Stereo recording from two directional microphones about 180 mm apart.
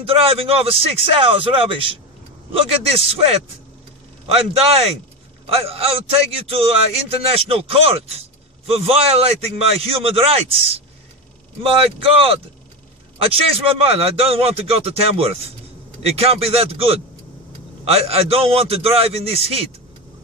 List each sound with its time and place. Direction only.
0.0 s a man's voice: 30° right (ahead or behind)
5.5 s a man's voice: 30° right (ahead or behind)